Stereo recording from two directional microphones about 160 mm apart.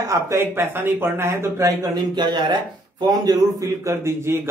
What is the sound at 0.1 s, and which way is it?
A man's voice, 15° right (ahead or behind).